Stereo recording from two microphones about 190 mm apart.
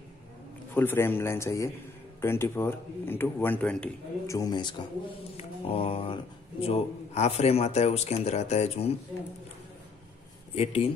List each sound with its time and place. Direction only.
0.7 s a man's voice: 10° left (ahead or behind)
4.4 s a man's voice: 20° left (ahead or behind)
10.5 s a man's voice: 30° left (ahead or behind)